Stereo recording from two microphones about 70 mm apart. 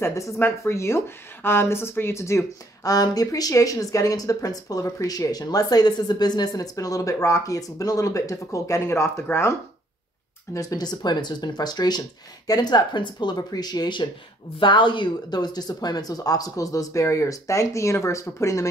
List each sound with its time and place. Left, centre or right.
0.0 s speech: left
2.8 s speech: left
10.5 s speech: left
15.3 s speech: left